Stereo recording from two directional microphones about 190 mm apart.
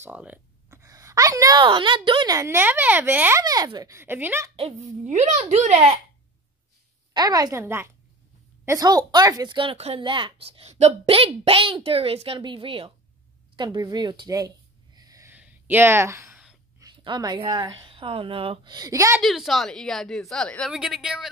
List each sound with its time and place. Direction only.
0.0 s a woman's voice: 5° right (ahead or behind)
4.8 s a child's voice: 40° right (ahead or behind)
7.2 s a woman's voice: 20° right (ahead or behind)
15.0 s a sound: 20° right (ahead or behind)
16.8 s speech: 25° right (ahead or behind)
19.2 s a woman's voice: centre (ahead or behind)